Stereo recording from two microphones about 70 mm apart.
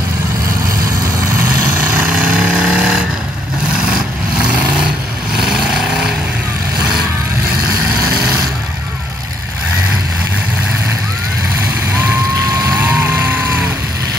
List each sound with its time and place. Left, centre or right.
1.8 s vehicle: right
2.3 s vehicle: centre
4.4 s vehicle: centre
13.0 s music: right